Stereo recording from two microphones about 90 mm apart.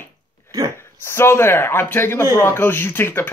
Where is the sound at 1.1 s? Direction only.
30° left (ahead or behind).